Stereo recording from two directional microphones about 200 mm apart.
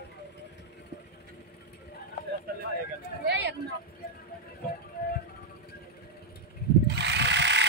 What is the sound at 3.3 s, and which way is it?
Vehicle, 55° right (ahead or behind).